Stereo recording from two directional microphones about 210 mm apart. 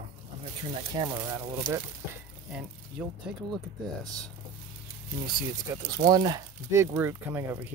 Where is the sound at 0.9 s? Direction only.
15° right (ahead or behind).